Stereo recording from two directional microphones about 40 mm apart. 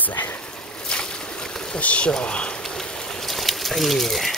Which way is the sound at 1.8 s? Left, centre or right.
Left.